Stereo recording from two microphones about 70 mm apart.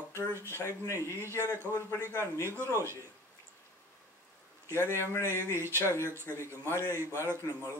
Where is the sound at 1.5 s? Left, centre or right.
Left.